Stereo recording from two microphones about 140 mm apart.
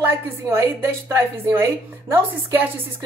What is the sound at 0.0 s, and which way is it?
A woman's voice, 15° right (ahead or behind).